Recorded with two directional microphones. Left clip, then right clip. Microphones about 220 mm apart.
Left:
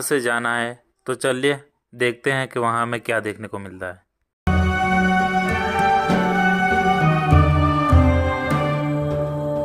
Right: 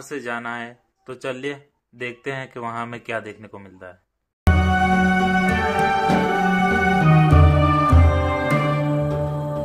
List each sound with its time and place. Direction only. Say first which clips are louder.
0.1 s speech: left 8 dB; 35° left (ahead or behind)
4.5 s music: right 1 dB; centre (ahead or behind)